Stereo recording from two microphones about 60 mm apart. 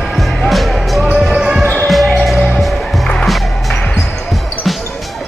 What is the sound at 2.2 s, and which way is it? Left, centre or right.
Music, centre.